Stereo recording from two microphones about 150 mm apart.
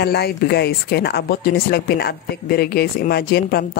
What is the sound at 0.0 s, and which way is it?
Speech, 90° left.